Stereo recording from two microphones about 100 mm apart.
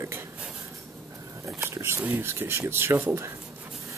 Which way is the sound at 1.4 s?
30° right (ahead or behind).